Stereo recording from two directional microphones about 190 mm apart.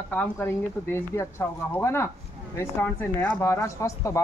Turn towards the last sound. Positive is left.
turn(degrees=15)  # may be behind; listen again after turning